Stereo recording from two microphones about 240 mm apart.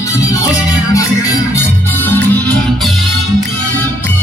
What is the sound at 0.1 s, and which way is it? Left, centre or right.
Music, centre.